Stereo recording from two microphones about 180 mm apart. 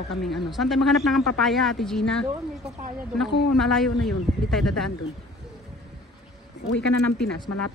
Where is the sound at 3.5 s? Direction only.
Centre (ahead or behind).